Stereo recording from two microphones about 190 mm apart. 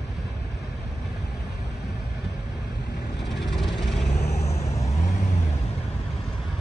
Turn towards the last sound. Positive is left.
turn(degrees=35)  # may be behind; listen again after turning